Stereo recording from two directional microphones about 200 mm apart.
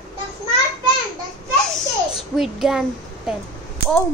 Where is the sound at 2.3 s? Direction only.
Centre (ahead or behind).